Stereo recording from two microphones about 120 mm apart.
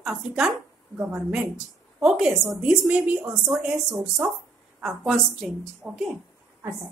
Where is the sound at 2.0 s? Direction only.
5° right (ahead or behind).